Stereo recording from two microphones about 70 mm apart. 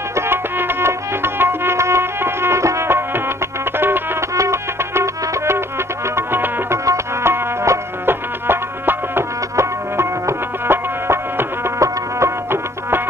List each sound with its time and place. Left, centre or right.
0.1 s music: right
4.4 s music: right
6.9 s music: right